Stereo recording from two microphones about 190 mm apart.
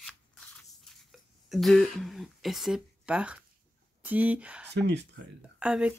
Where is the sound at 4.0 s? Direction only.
10° right (ahead or behind).